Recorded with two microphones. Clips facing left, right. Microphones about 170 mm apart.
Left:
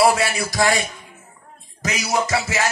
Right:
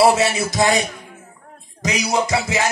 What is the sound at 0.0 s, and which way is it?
Speech, 25° right (ahead or behind).